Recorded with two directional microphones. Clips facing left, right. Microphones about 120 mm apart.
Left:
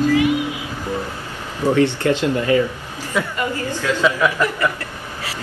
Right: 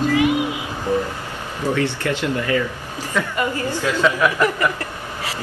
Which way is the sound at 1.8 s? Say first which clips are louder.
Left 5 dB; 20° left (ahead or behind).